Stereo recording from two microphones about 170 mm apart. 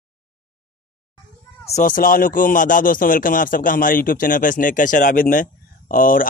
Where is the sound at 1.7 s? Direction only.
55° left (ahead or behind).